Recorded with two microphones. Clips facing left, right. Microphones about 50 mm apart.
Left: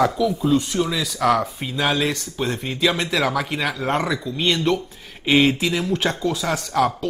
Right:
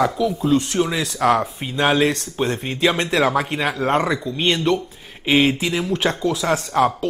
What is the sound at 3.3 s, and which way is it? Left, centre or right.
Speech, right.